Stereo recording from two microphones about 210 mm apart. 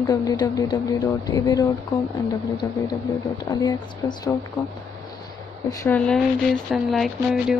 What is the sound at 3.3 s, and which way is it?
Speech, 20° left (ahead or behind).